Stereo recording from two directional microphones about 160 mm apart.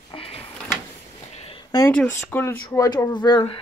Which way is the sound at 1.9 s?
10° left (ahead or behind).